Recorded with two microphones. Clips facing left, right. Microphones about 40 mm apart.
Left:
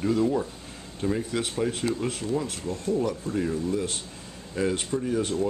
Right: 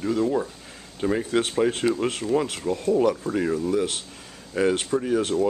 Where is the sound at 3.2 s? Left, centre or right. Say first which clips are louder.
Right 3 dB; right.